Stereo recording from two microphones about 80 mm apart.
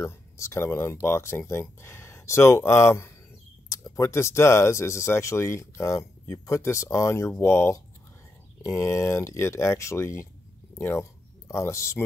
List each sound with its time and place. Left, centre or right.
0.0 s speech: left
3.6 s a sound: left
4.0 s speech: left